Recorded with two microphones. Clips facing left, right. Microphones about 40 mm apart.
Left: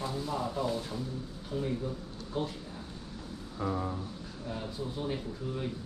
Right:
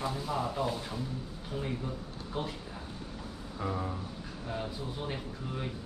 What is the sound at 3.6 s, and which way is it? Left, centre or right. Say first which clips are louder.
Speech: left 2 dB; centre.